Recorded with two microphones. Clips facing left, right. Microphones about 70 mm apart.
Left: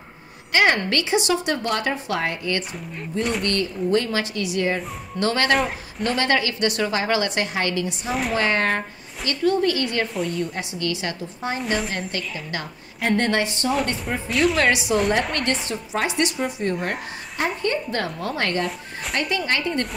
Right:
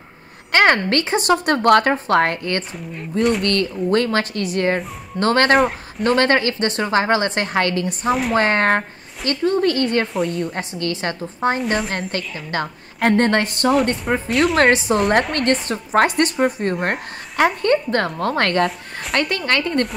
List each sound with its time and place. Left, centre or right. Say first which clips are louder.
0.5 s a woman's voice: right 4 dB; right
7.5 s a woman's voice: right 5 dB; right
8.1 s a woman's voice: right 6 dB; centre
8.4 s a woman's voice: right 3 dB; right
11.6 s a woman's voice: right 3 dB; centre
12.1 s a woman's voice: right 4 dB; right
14.3 s a woman's voice: right 2 dB; centre
14.6 s a woman's voice: right 5 dB; right
15.7 s a woman's voice: right 8 dB; right